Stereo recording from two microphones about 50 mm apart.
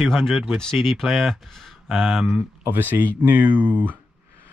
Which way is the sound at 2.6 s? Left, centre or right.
Right.